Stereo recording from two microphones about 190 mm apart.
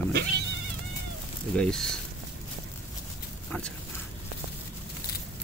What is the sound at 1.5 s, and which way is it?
Speech, centre (ahead or behind).